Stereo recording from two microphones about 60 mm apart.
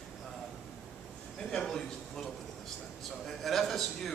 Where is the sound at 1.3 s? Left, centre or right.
Centre.